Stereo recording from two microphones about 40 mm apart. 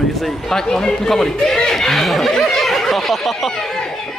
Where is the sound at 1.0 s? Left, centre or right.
Centre.